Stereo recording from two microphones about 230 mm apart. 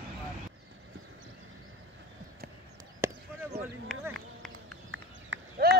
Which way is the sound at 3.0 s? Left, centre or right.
Centre.